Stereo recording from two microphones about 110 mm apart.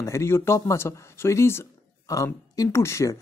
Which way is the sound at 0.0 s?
25° left (ahead or behind).